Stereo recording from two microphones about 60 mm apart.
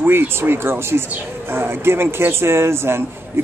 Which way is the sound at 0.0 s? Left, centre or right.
Right.